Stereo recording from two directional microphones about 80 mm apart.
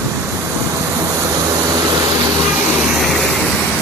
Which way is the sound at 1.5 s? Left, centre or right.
Right.